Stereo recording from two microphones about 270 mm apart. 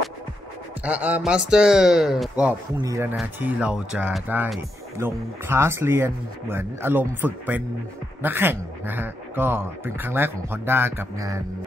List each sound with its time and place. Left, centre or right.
0.8 s speech: centre